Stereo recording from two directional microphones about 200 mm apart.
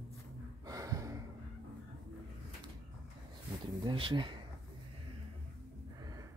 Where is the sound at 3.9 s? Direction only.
25° right (ahead or behind).